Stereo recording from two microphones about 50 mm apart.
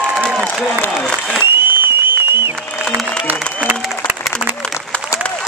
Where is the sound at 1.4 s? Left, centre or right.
Right.